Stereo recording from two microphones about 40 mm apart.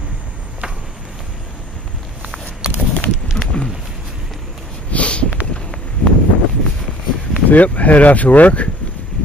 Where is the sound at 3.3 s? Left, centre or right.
Centre.